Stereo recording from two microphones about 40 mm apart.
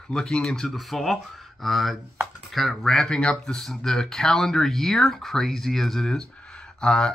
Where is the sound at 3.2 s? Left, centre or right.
Left.